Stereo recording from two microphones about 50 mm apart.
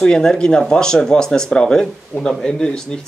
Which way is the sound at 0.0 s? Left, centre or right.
Centre.